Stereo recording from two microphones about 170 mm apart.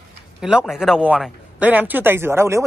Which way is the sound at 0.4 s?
5° right (ahead or behind).